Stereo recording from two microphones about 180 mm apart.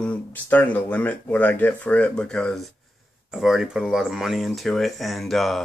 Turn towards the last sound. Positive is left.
turn(degrees=0)  # may be behind; listen again after turning